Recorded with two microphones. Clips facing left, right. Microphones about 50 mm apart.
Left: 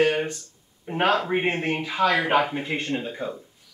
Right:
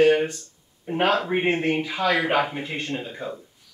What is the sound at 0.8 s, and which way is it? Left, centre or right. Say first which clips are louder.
Speech: even; centre.